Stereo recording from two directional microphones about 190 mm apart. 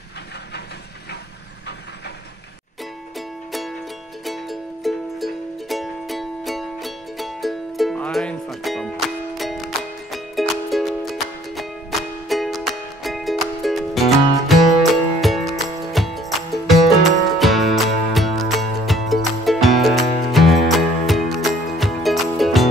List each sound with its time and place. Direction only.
3.2 s music: centre (ahead or behind)